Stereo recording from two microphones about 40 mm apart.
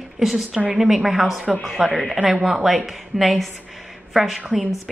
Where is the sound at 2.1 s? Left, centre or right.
Centre.